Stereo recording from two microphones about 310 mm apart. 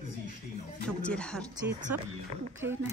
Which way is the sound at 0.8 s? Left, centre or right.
Centre.